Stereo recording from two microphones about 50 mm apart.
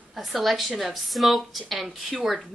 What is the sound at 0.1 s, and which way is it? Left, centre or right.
A woman's voice, centre.